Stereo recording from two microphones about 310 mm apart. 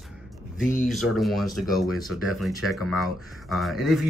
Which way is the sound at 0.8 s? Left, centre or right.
Centre.